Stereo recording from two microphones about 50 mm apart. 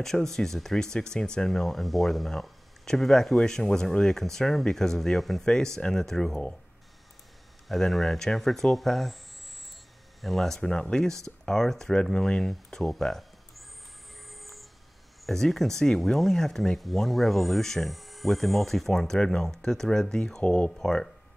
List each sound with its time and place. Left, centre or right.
0.0 s speech: centre
7.6 s speech: centre
10.2 s speech: centre
11.9 s speech: centre
13.0 s music: centre
14.3 s owl: centre
15.2 s speech: centre
20.8 s speech: centre